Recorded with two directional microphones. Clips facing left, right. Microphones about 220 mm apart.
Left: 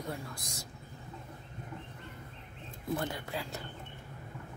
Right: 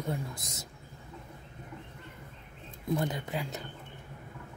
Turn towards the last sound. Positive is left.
turn(degrees=-20)  # may be behind; listen again after turning